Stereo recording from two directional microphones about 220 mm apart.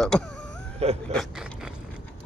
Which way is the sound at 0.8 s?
30° right (ahead or behind).